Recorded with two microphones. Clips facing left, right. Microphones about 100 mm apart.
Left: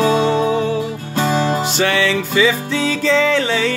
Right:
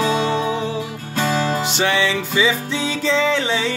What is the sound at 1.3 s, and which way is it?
Music, 35° left (ahead or behind).